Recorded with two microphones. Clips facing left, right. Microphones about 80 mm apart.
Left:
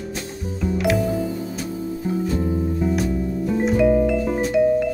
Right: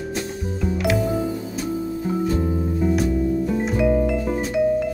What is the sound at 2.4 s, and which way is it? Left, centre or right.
Music, centre.